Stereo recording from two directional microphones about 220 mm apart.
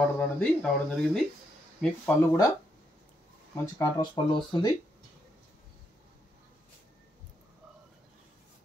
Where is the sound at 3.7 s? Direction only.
20° left (ahead or behind).